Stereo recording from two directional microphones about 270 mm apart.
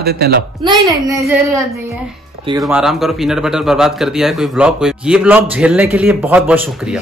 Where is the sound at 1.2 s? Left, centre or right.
Centre.